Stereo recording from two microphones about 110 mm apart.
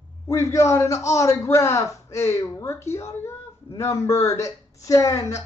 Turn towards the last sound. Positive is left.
turn(degrees=30)  # may be behind; listen again after turning